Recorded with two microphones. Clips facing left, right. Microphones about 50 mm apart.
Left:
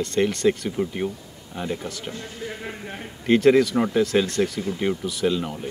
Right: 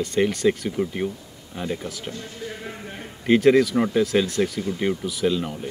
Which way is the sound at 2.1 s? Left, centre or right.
Centre.